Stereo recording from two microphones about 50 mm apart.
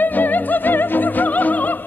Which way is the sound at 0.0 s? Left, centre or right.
Left.